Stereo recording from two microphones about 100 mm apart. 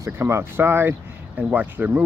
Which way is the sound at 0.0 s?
25° right (ahead or behind).